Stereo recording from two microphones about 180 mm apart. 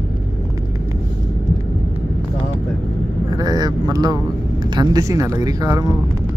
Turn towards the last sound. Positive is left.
turn(degrees=-20)  # may be behind; listen again after turning